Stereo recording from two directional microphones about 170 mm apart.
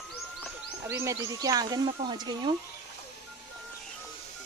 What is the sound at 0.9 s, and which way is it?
Speech, 15° right (ahead or behind).